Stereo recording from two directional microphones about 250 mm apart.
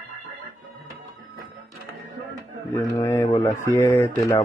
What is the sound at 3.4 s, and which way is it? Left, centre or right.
Speech, centre.